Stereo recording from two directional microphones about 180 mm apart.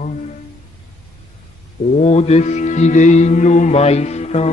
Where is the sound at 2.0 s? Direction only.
35° left (ahead or behind).